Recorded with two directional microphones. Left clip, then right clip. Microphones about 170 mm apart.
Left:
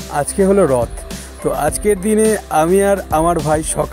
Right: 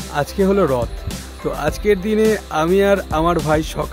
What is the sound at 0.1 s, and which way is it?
Speech, 15° left (ahead or behind).